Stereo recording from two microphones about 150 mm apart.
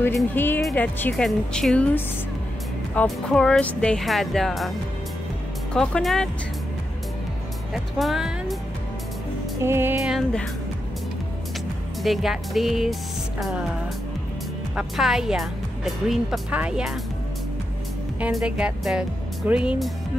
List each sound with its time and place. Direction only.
0.1 s speech: 15° left (ahead or behind)
2.9 s speech: 10° left (ahead or behind)
7.7 s speech: centre (ahead or behind)
9.6 s speech: 15° right (ahead or behind)
12.0 s speech: centre (ahead or behind)
14.8 s speech: 5° right (ahead or behind)
18.2 s speech: 5° right (ahead or behind)